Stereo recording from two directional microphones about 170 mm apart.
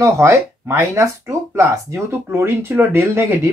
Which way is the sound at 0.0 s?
15° right (ahead or behind).